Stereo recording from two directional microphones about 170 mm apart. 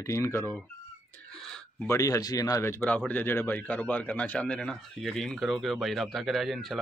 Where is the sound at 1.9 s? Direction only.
20° left (ahead or behind).